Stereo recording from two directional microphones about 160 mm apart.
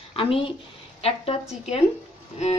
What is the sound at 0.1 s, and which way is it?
A woman's voice, 35° left (ahead or behind).